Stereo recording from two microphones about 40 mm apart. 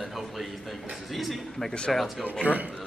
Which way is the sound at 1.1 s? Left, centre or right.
Centre.